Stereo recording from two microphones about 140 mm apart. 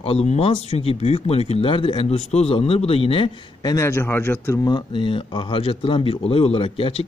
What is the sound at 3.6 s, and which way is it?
Speech, 20° left (ahead or behind).